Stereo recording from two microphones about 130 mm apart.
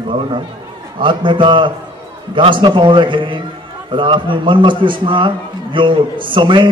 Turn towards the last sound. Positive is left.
turn(degrees=-40)  # may be behind; listen again after turning